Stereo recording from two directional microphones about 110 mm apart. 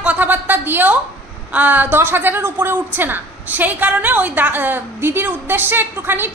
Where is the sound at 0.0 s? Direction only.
15° right (ahead or behind).